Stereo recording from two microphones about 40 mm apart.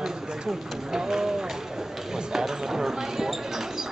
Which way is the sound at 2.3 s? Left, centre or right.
Centre.